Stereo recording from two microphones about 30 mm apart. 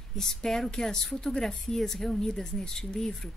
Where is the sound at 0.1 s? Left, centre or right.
Centre.